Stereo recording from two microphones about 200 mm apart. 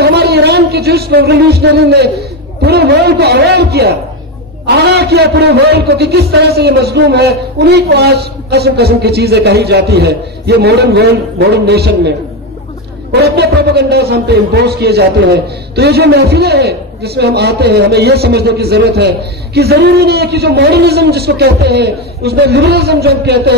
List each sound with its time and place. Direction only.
0.0 s a man's voice: 55° right (ahead or behind)
13.1 s a man's voice: 55° right (ahead or behind)